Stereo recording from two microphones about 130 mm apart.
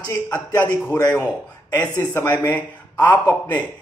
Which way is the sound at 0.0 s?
25° left (ahead or behind).